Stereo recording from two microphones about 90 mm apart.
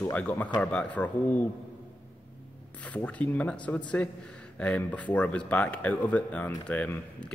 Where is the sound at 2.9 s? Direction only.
15° left (ahead or behind).